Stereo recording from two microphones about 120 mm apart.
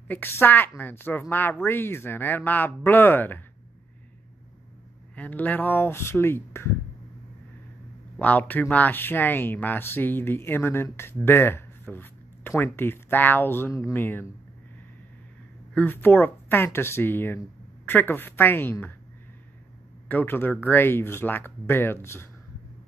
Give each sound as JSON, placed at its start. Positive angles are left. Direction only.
{"t": 0.1, "sound": "speech", "side_deg": 20}
{"t": 5.1, "sound": "speech", "side_deg": 10}
{"t": 8.2, "sound": "speech", "side_deg": 15}
{"t": 15.7, "sound": "speech", "side_deg": 15}
{"t": 20.1, "sound": "speech", "side_deg": 15}